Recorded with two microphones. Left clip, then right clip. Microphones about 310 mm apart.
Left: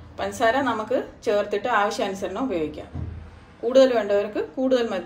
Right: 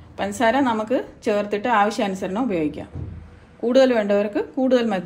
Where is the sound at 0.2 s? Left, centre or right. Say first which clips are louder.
Right 2 dB; right.